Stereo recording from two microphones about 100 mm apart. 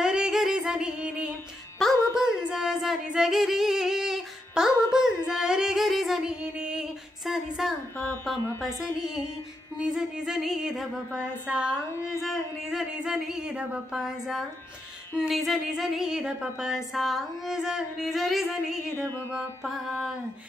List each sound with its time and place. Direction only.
0.0 s music: 5° right (ahead or behind)
1.8 s music: 5° left (ahead or behind)
2.2 s music: 5° right (ahead or behind)
9.8 s a sound: 10° right (ahead or behind)
11.9 s music: 30° left (ahead or behind)
12.3 s a sound: 5° right (ahead or behind)